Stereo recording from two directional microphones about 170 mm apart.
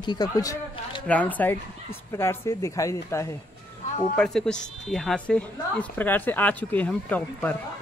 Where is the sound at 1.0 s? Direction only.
10° left (ahead or behind).